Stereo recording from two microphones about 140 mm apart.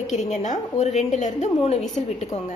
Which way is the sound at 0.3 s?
55° left (ahead or behind).